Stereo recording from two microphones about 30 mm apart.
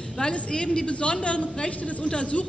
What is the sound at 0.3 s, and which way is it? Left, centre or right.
Speech, left.